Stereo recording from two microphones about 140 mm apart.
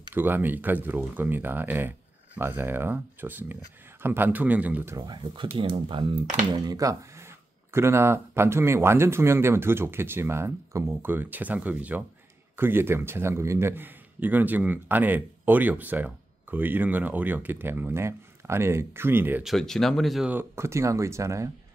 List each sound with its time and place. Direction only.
0.1 s a man's voice: 15° right (ahead or behind)
4.9 s a man's voice: 30° right (ahead or behind)
19.4 s speech: centre (ahead or behind)
20.2 s speech: 15° right (ahead or behind)